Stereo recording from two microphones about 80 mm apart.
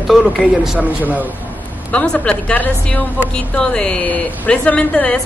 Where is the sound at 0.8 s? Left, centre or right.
Right.